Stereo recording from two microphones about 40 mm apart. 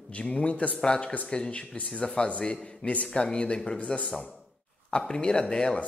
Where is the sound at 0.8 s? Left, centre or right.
Centre.